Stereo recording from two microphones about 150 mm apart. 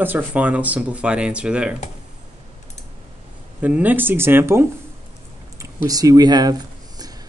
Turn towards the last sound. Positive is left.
turn(degrees=-25)  # may be behind; listen again after turning